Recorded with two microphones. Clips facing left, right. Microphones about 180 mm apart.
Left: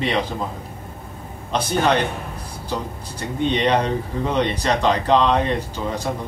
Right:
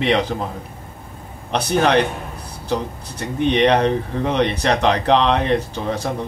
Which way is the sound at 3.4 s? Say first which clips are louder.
Right 4 dB; 65° right (ahead or behind).